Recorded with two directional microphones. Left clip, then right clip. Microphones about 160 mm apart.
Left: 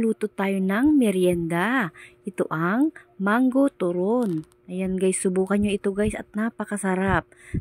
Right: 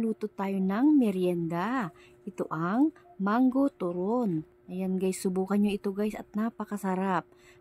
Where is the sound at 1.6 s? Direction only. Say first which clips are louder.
Left 8 dB; 25° left (ahead or behind).